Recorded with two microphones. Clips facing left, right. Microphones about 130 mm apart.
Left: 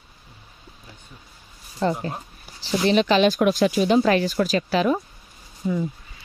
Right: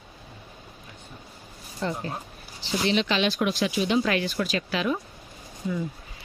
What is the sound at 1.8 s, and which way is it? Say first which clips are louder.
Speech: left 6 dB; 40° left (ahead or behind).